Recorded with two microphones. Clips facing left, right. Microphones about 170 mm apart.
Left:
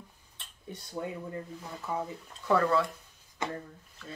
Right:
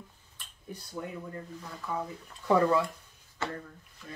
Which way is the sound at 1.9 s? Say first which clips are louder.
Left 1 dB; 20° left (ahead or behind).